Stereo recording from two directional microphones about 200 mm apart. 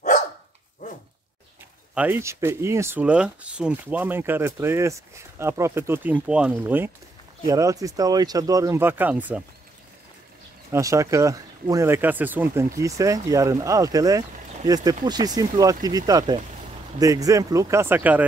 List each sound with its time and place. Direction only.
2.0 s speech: 10° right (ahead or behind)
10.7 s speech: 15° right (ahead or behind)